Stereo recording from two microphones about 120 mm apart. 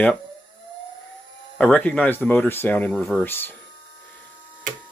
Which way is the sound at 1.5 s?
15° left (ahead or behind).